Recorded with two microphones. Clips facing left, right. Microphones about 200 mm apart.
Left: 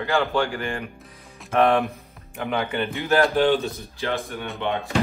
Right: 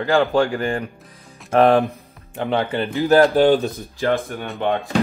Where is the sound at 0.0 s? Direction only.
40° right (ahead or behind).